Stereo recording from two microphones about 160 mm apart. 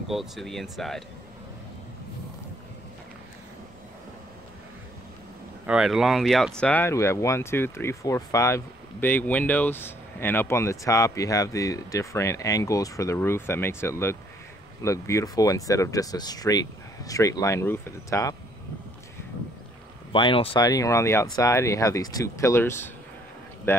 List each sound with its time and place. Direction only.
0.1 s speech: centre (ahead or behind)
5.7 s speech: 5° right (ahead or behind); by 18.3 s 15° left (ahead or behind)
20.1 s speech: 35° left (ahead or behind); by 23.8 s 15° left (ahead or behind)